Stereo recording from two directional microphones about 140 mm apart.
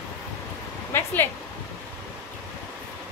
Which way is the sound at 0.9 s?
15° left (ahead or behind).